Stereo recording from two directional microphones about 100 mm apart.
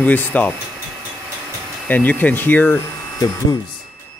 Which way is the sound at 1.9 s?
15° left (ahead or behind).